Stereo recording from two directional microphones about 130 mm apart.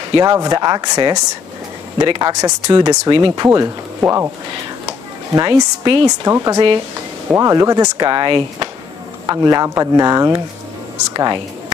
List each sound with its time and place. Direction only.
0.1 s speech: 35° right (ahead or behind)
4.0 s speech: 20° right (ahead or behind)
5.3 s speech: 35° right (ahead or behind)
9.3 s speech: 30° right (ahead or behind)